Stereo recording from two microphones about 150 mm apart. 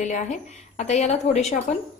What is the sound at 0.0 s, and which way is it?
A woman's voice, 55° left (ahead or behind).